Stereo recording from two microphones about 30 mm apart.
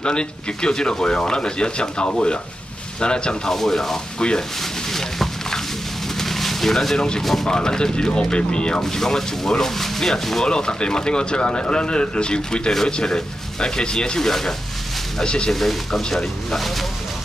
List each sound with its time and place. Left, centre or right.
0.0 s speech: left
3.4 s speech: centre
6.1 s a sound: centre
7.4 s speech: left
8.8 s speech: centre
10.4 s speech: left
15.2 s speech: left
15.5 s speech: centre